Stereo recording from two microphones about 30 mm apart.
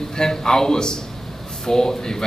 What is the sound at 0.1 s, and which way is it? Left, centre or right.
A man's voice, left.